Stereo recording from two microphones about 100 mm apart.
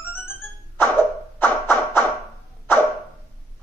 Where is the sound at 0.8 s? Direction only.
20° left (ahead or behind).